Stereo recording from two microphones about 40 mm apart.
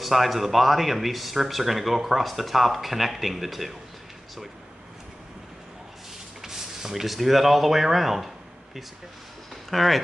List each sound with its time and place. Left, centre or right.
0.0 s speech: centre
6.4 s speech: centre
9.7 s speech: centre